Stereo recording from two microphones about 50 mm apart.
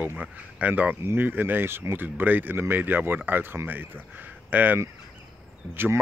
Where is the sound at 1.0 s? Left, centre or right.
Right.